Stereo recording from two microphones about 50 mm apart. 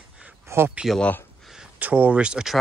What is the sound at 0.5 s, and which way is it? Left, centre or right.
Speech, right.